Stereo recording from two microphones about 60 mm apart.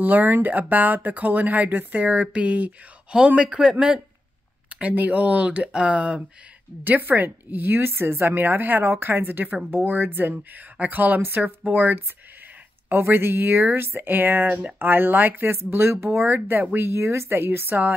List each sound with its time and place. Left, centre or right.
0.0 s speech: right
6.8 s speech: right
15.4 s speech: right